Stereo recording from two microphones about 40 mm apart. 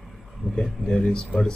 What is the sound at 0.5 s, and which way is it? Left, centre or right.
Speech, centre.